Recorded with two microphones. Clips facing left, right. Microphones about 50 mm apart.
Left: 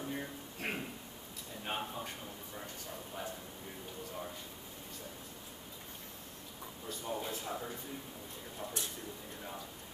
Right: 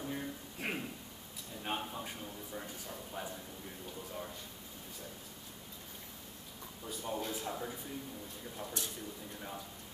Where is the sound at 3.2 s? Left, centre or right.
Centre.